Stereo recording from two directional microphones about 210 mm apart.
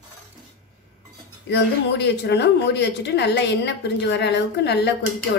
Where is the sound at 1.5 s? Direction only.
55° left (ahead or behind).